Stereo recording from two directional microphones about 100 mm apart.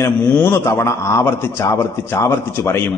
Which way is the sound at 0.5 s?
25° left (ahead or behind).